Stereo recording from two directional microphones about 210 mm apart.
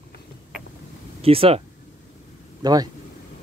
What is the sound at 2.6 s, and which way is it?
Speech, 20° right (ahead or behind).